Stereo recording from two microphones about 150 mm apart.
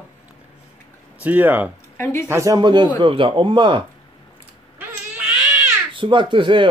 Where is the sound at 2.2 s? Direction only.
20° right (ahead or behind).